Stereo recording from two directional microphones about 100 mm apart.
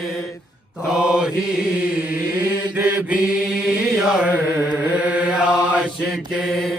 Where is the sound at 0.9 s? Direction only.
10° right (ahead or behind).